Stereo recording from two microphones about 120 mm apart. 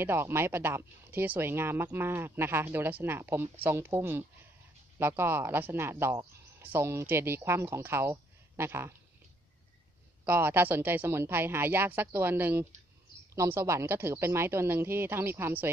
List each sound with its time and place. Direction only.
0.0 s speech: 20° right (ahead or behind)
10.2 s a woman's voice: 20° right (ahead or behind)